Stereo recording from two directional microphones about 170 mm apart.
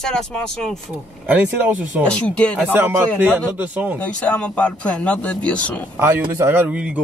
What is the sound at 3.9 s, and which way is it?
Speech, 10° left (ahead or behind).